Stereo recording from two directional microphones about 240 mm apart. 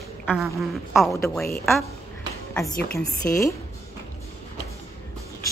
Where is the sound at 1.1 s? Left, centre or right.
Centre.